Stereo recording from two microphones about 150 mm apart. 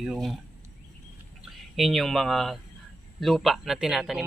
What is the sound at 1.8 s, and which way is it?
A man's voice, centre (ahead or behind).